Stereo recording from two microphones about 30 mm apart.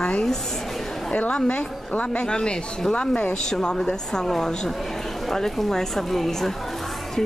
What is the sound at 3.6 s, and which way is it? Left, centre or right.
Speech, left.